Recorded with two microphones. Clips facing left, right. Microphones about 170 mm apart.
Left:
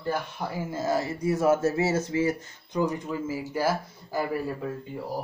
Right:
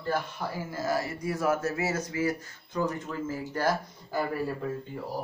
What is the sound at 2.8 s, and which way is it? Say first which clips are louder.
Speech: left 3 dB; 15° left (ahead or behind).